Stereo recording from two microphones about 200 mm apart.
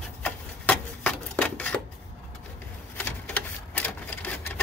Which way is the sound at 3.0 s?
5° left (ahead or behind).